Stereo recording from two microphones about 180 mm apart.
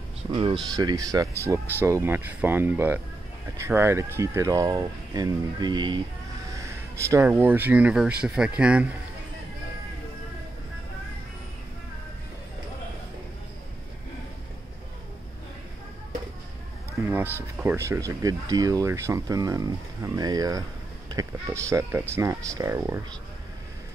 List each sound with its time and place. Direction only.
0.3 s speech: 30° right (ahead or behind); by 8.9 s 5° right (ahead or behind)
17.1 s speech: 10° right (ahead or behind)